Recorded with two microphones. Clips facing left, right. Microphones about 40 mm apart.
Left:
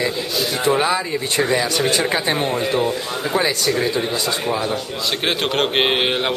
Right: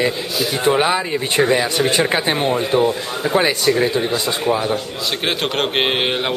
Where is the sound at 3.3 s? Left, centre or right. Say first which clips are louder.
Right 4 dB; right.